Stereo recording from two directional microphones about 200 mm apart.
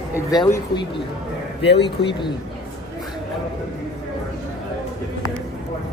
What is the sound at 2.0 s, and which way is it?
Speech, 25° left (ahead or behind).